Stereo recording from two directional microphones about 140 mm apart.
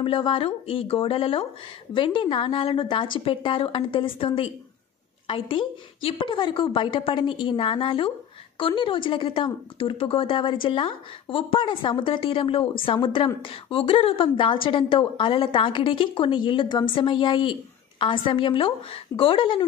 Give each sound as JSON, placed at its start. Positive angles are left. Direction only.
{"t": 0.0, "sound": "a woman's voice", "side_deg": 40}